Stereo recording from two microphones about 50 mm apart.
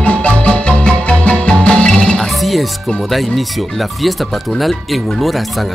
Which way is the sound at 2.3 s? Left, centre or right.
Centre.